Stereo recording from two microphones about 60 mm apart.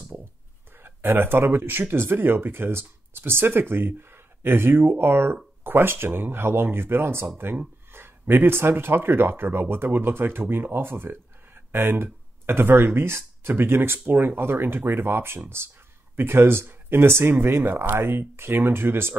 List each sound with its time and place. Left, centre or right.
0.7 s speech: right